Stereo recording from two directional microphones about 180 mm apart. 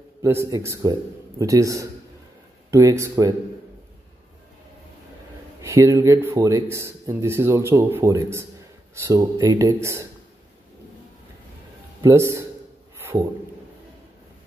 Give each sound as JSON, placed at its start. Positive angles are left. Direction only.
{"t": 0.2, "sound": "a man's voice", "side_deg": -15}
{"t": 5.6, "sound": "speech", "side_deg": -15}
{"t": 12.0, "sound": "speech", "side_deg": -15}
{"t": 13.0, "sound": "a sound", "side_deg": -20}